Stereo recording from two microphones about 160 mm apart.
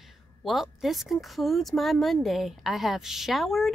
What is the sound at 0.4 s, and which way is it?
A woman's voice, centre (ahead or behind).